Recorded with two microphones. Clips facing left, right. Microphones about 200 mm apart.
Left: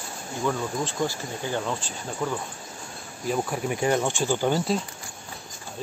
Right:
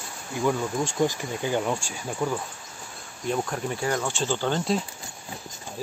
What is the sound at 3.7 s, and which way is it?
Speech, 20° left (ahead or behind).